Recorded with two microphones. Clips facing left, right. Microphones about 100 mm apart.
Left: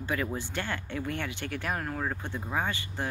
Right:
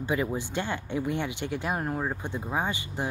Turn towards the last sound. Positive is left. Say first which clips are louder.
# right 2 dB
turn(degrees=-15)  # may be behind; listen again after turning